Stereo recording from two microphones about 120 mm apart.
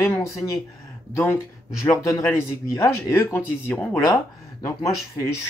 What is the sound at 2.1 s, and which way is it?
Speech, 25° left (ahead or behind).